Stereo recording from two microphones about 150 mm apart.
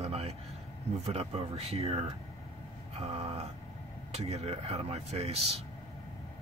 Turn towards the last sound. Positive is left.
turn(degrees=-45)  # may be behind; listen again after turning